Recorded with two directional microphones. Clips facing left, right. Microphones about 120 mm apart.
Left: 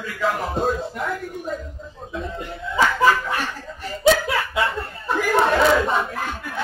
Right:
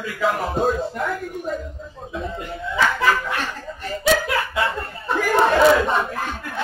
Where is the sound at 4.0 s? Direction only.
25° left (ahead or behind).